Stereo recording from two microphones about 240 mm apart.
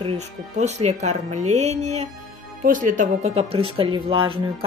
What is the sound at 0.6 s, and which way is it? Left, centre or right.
Speech, right.